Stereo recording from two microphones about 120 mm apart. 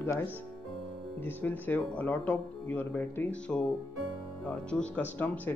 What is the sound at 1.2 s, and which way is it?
Speech, 15° left (ahead or behind).